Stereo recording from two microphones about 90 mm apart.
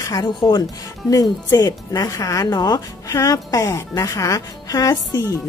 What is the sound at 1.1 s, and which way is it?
Speech, 40° left (ahead or behind).